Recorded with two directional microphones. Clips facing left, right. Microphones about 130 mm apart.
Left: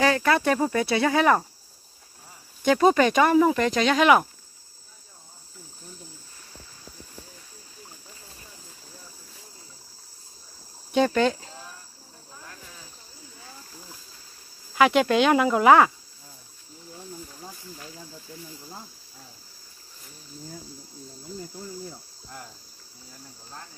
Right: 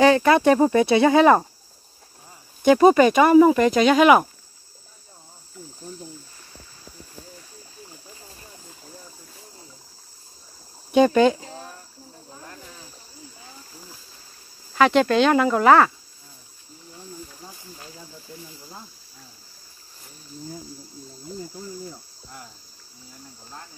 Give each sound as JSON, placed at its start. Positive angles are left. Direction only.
{"t": 0.0, "sound": "speech", "side_deg": -20}
{"t": 2.6, "sound": "speech", "side_deg": -10}
{"t": 10.9, "sound": "speech", "side_deg": -10}
{"t": 14.8, "sound": "speech", "side_deg": 10}